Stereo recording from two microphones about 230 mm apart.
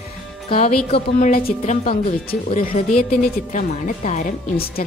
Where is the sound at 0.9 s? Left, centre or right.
Left.